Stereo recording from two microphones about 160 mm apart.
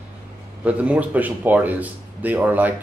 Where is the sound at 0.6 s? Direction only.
10° right (ahead or behind).